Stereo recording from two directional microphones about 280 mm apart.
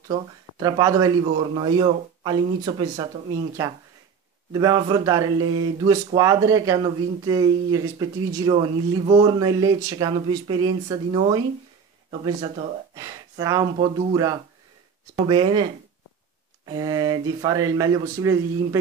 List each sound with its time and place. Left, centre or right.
0.1 s speech: centre
4.5 s speech: centre
12.9 s speech: centre
16.6 s speech: centre